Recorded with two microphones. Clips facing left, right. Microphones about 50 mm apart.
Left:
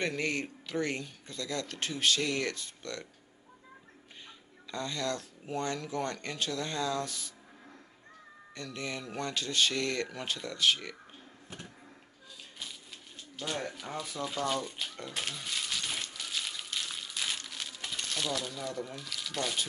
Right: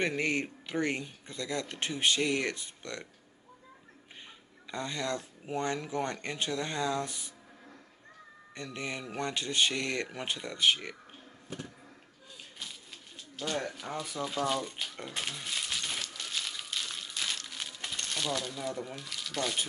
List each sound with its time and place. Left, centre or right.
0.0 s speech: centre
4.6 s speech: right
8.5 s speech: right
13.4 s speech: centre
15.1 s a sound: centre